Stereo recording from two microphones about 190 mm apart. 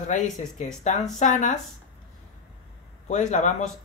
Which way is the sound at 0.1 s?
40° left (ahead or behind).